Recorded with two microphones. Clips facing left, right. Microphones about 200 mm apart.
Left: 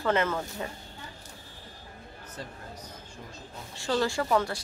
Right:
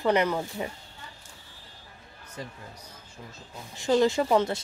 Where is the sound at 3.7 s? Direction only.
20° right (ahead or behind).